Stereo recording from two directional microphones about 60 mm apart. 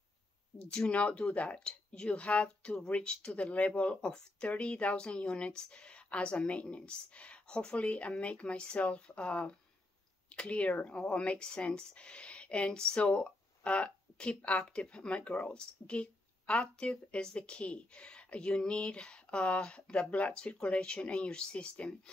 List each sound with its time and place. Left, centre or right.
0.6 s a woman's voice: centre